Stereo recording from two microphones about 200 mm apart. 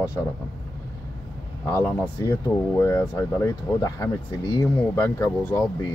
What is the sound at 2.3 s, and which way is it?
Speech, 15° left (ahead or behind).